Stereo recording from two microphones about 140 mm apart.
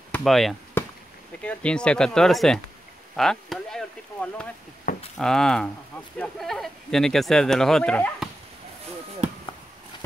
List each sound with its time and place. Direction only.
0.2 s speech: centre (ahead or behind)
4.9 s a sound: 85° left
5.2 s speech: 5° left (ahead or behind)